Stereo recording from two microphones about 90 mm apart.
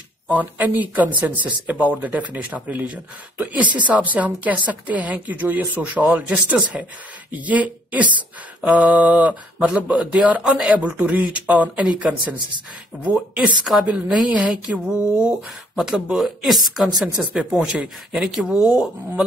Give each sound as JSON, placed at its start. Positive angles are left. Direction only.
{"t": 0.3, "sound": "speech", "side_deg": -15}